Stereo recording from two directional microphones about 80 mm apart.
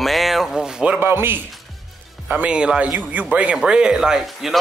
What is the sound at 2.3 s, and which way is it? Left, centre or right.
Speech, centre.